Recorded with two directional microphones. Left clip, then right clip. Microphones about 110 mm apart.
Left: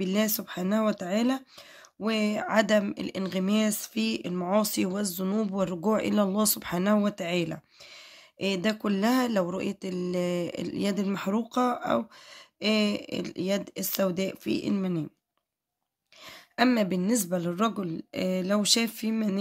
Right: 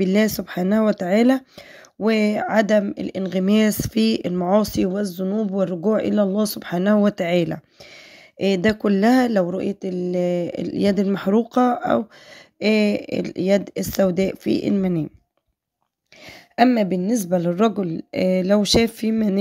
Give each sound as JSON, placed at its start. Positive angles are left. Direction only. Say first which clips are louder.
{"t": 0.0, "sound": "speech", "louder": "right 9 dB", "side_deg": -55}
{"t": 3.4, "sound": "speech", "louder": "right 10 dB", "side_deg": -65}
{"t": 4.3, "sound": "speech", "louder": "right 8 dB", "side_deg": -40}
{"t": 4.8, "sound": "speech", "louder": "right 8 dB", "side_deg": -25}
{"t": 7.0, "sound": "speech", "louder": "right 9 dB", "side_deg": -55}
{"t": 9.4, "sound": "speech", "louder": "right 7 dB", "side_deg": -30}
{"t": 10.8, "sound": "speech", "louder": "right 11 dB", "side_deg": -50}
{"t": 16.7, "sound": "speech", "louder": "right 6 dB", "side_deg": -30}
{"t": 17.3, "sound": "speech", "louder": "right 9 dB", "side_deg": -50}